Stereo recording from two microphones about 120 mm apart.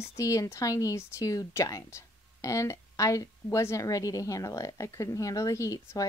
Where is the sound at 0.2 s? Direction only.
25° left (ahead or behind).